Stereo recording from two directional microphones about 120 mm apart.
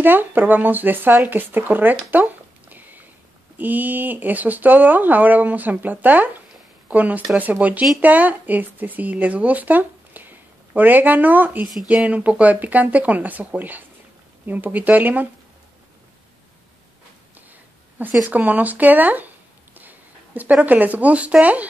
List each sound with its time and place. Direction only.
0.0 s speech: 15° right (ahead or behind)
18.2 s speech: 15° right (ahead or behind)
19.8 s a sound: 15° right (ahead or behind)
20.6 s speech: 15° right (ahead or behind)